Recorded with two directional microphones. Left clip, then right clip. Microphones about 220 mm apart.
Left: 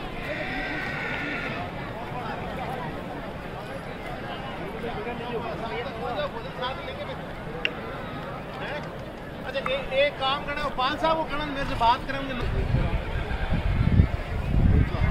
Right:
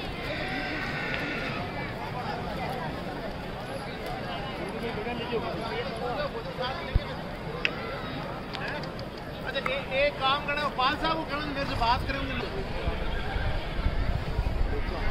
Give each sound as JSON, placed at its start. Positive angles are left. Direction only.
{"t": 9.6, "sound": "speech", "side_deg": 50}